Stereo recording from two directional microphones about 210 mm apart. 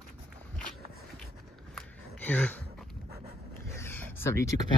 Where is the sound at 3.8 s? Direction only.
10° left (ahead or behind).